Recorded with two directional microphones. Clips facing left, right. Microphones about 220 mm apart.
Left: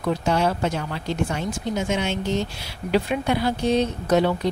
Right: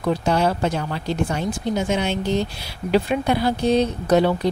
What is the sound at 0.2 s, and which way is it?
Speech, 35° right (ahead or behind).